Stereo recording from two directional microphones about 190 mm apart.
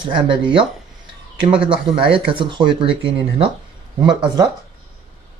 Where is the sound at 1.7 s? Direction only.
25° right (ahead or behind).